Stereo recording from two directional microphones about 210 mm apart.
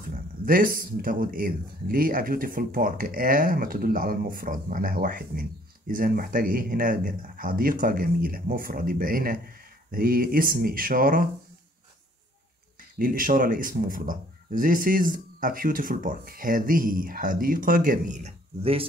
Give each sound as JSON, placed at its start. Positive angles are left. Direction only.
{"t": 0.1, "sound": "speech", "side_deg": -45}
{"t": 13.0, "sound": "speech", "side_deg": -40}